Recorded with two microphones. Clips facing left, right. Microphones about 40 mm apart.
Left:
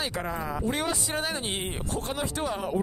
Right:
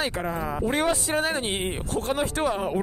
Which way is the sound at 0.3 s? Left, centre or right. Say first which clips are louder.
Right 3 dB; right.